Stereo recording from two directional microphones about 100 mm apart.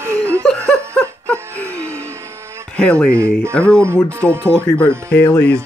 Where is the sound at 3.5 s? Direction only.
10° left (ahead or behind).